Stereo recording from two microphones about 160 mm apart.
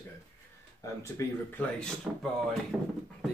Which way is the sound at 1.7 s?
5° left (ahead or behind).